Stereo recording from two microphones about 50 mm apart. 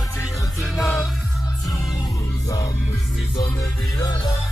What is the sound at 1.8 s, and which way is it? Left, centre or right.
Music, left.